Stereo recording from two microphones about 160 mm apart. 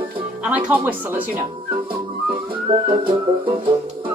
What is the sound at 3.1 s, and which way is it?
Music, 30° right (ahead or behind).